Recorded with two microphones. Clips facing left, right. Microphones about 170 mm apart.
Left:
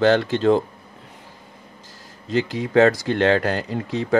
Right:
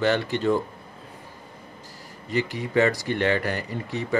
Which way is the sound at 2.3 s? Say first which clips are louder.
Left 4 dB; 90° left.